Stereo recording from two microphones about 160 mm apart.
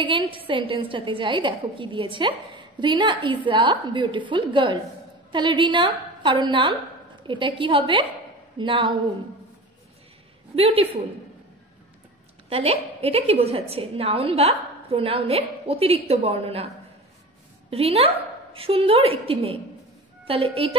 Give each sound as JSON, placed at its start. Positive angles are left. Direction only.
{"t": 0.0, "sound": "a woman's voice", "side_deg": -30}
{"t": 10.5, "sound": "a woman's voice", "side_deg": -35}
{"t": 12.4, "sound": "a woman's voice", "side_deg": -40}